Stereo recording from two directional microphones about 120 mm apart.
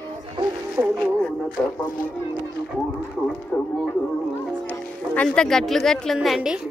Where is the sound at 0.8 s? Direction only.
5° right (ahead or behind).